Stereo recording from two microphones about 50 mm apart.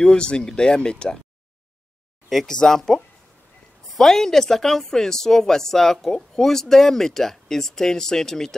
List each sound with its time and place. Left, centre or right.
0.0 s a woman's voice: centre
2.2 s a woman's voice: centre